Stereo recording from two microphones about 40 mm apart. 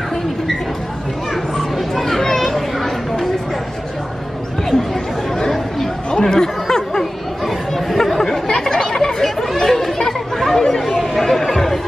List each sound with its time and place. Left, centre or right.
1.8 s a sound: centre
5.3 s chatter: centre
7.0 s chatter: centre
9.2 s chatter: centre